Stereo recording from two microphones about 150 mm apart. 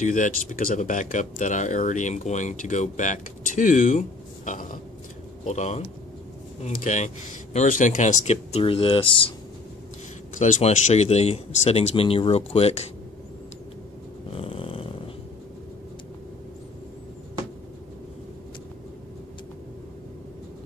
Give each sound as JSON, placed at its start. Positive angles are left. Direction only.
{"t": 0.0, "sound": "speech", "side_deg": 55}
{"t": 5.4, "sound": "speech", "side_deg": 50}
{"t": 10.3, "sound": "speech", "side_deg": 55}
{"t": 14.3, "sound": "snoring", "side_deg": 40}